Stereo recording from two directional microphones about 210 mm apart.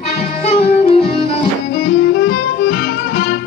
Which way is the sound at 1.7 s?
60° left (ahead or behind).